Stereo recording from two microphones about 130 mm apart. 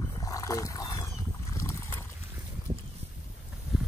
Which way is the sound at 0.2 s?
25° left (ahead or behind).